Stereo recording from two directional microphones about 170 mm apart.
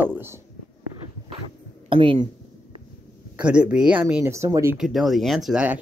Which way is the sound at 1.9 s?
30° right (ahead or behind).